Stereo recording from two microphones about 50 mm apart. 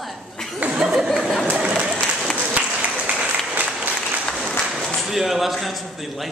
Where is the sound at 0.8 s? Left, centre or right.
Centre.